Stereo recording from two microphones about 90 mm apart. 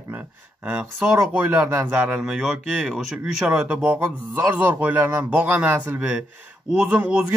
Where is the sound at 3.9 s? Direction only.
30° right (ahead or behind).